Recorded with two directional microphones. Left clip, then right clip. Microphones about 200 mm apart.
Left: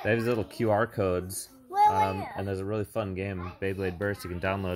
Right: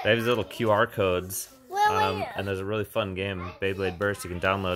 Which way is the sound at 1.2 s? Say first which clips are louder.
Right 3 dB; 55° right (ahead or behind).